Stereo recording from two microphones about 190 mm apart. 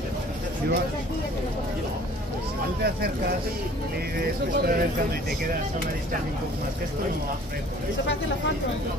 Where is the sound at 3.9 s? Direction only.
55° right (ahead or behind).